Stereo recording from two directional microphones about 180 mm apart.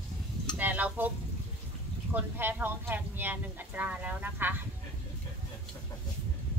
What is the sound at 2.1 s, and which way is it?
Speech, 10° right (ahead or behind).